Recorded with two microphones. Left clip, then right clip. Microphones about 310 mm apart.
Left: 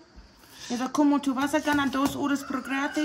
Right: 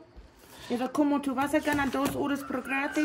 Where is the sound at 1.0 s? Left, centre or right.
Centre.